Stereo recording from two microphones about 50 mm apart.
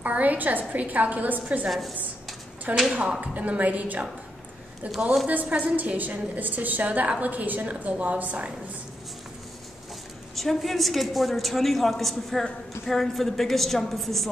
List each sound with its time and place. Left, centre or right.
0.0 s a woman's voice: right
1.7 s a woman's voice: centre
2.9 s a woman's voice: right
10.3 s a woman's voice: centre